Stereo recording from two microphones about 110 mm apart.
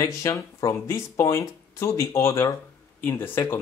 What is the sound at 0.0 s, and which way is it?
Speech, 30° left (ahead or behind).